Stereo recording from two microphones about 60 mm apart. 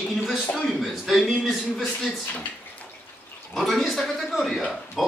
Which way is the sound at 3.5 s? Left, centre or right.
Centre.